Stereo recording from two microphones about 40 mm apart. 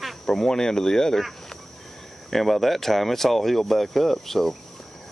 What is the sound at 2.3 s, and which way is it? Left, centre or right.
Speech, centre.